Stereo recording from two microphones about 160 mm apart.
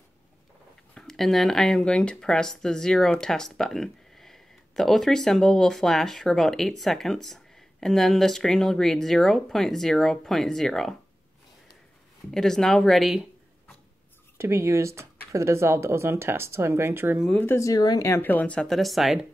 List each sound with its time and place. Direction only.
0.9 s speech: 5° left (ahead or behind)
12.3 s speech: 5° left (ahead or behind)
14.4 s speech: 15° right (ahead or behind)
17.2 s speech: 10° left (ahead or behind)